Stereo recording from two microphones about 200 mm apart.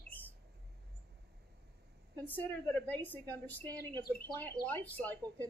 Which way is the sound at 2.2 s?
10° left (ahead or behind).